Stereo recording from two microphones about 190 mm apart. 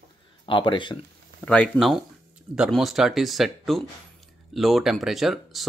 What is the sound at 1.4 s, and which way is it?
Speech, 5° left (ahead or behind).